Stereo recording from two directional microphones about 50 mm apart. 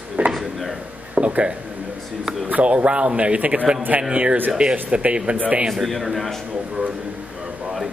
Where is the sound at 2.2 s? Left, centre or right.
Centre.